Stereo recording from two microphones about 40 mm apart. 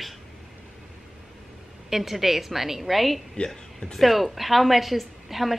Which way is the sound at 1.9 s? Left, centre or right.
Centre.